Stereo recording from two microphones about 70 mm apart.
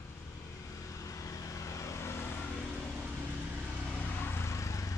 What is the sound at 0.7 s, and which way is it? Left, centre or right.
Vehicle, left.